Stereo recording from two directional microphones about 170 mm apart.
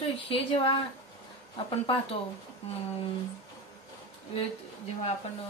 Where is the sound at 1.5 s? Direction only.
35° left (ahead or behind).